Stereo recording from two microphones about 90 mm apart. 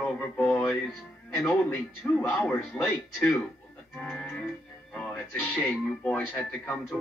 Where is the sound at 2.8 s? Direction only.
15° left (ahead or behind).